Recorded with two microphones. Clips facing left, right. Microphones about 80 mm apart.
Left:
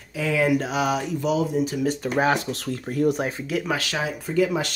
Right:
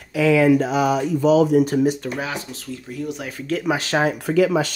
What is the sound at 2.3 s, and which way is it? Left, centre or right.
Speech, left.